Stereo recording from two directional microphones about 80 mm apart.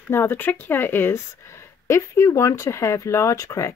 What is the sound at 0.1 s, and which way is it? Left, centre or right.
Speech, left.